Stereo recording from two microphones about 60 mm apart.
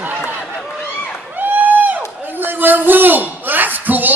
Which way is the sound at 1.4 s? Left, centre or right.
Right.